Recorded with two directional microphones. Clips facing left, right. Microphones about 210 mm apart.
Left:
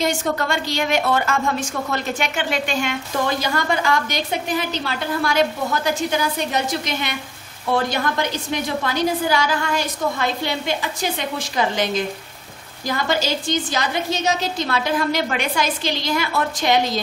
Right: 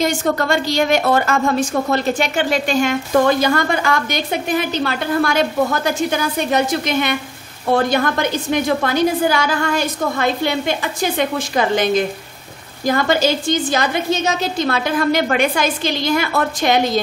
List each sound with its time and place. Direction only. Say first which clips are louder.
0.0 s a woman's voice: right 4 dB; 40° right (ahead or behind)